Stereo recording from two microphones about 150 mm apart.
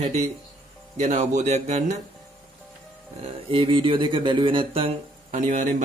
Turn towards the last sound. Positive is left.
turn(degrees=-60)  # may be behind; listen again after turning